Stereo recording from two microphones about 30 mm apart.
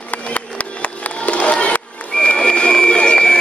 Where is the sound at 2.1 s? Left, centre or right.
Left.